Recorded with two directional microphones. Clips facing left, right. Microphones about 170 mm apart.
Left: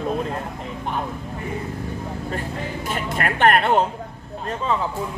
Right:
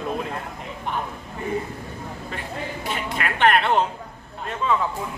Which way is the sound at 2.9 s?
45° left (ahead or behind).